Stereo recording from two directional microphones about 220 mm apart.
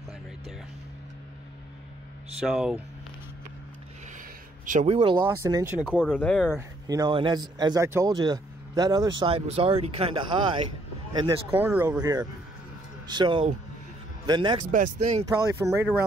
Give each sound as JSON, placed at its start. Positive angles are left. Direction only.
{"t": 2.4, "sound": "speech", "side_deg": 0}
{"t": 4.6, "sound": "speech", "side_deg": -30}
{"t": 5.9, "sound": "speech", "side_deg": 5}
{"t": 6.5, "sound": "speech", "side_deg": -15}
{"t": 11.1, "sound": "speech", "side_deg": -15}
{"t": 14.7, "sound": "speech", "side_deg": -35}
{"t": 15.2, "sound": "speech", "side_deg": -15}